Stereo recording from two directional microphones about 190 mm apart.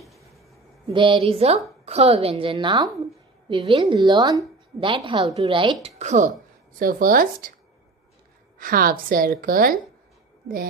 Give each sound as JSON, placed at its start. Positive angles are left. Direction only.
{"t": 0.9, "sound": "a woman's voice", "side_deg": -25}
{"t": 8.5, "sound": "a woman's voice", "side_deg": -50}